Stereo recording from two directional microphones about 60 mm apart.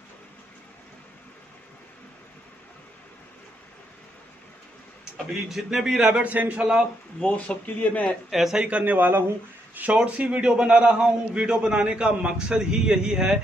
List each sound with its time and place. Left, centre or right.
5.3 s a man's voice: centre
7.2 s speech: left
8.3 s a man's voice: centre
8.6 s a man's voice: right